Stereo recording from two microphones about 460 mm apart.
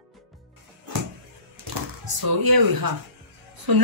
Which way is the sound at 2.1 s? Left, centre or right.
Right.